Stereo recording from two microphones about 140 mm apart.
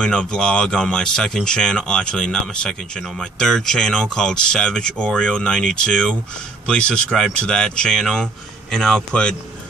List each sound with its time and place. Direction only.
0.0 s speech: 5° left (ahead or behind)